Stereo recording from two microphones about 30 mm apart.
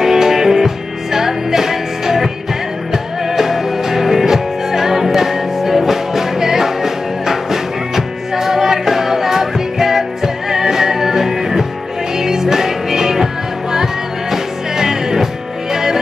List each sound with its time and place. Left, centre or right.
0.0 s music: centre